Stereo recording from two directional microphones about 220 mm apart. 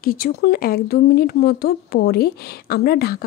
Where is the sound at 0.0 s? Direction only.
40° left (ahead or behind).